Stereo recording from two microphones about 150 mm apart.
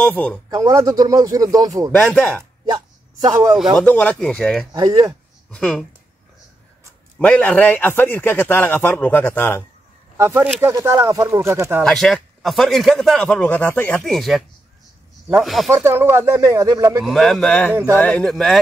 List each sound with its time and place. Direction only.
0.0 s a man's voice: 10° left (ahead or behind)
0.5 s speech: 20° right (ahead or behind)
1.9 s a man's voice: 10° left (ahead or behind)
3.3 s speech: 25° right (ahead or behind)
3.5 s speech: centre (ahead or behind)
3.8 s speech: 10° left (ahead or behind)
4.7 s speech: 25° right (ahead or behind)
5.5 s speech: 5° left (ahead or behind)
7.2 s a man's voice: 10° left (ahead or behind)
10.1 s speech: 15° right (ahead or behind)
11.8 s speech: 5° left (ahead or behind)
15.4 s speech: centre (ahead or behind)
15.8 s speech: 15° right (ahead or behind)
17.0 s speech: centre (ahead or behind)